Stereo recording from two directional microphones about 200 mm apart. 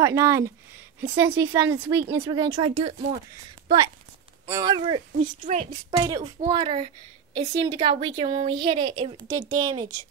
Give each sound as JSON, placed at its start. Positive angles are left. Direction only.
{"t": 0.0, "sound": "a woman's voice", "side_deg": -15}
{"t": 5.4, "sound": "a woman's voice", "side_deg": -40}
{"t": 5.7, "sound": "a woman's voice", "side_deg": -20}